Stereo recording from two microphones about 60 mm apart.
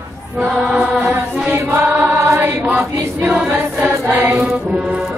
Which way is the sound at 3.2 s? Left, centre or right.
Right.